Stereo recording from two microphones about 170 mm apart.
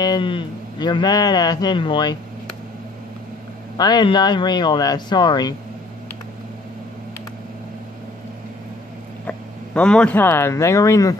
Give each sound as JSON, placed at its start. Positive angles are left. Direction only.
{"t": 0.0, "sound": "speech", "side_deg": 25}
{"t": 3.7, "sound": "speech", "side_deg": 25}
{"t": 9.8, "sound": "speech", "side_deg": 5}